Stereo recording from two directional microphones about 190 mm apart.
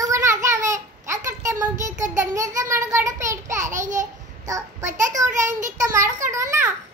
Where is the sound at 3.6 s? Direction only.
40° right (ahead or behind).